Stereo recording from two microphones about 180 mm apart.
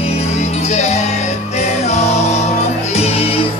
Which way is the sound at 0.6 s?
40° left (ahead or behind).